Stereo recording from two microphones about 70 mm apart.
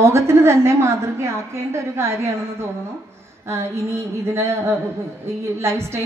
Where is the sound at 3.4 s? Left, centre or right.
Right.